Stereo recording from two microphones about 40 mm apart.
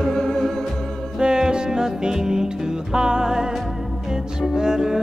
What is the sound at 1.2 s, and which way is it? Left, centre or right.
Music, right.